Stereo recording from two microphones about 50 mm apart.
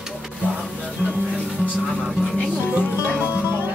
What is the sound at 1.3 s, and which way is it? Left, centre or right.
Music, centre.